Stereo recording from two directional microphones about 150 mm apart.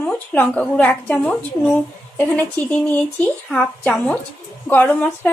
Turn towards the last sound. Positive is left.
turn(degrees=10)  # may be behind; listen again after turning